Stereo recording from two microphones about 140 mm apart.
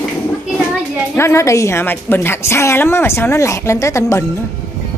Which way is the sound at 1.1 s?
20° left (ahead or behind).